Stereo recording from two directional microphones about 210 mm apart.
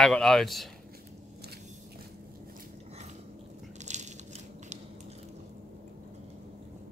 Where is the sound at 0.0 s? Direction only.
Centre (ahead or behind).